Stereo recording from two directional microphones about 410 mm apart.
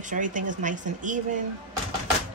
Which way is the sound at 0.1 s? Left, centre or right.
Centre.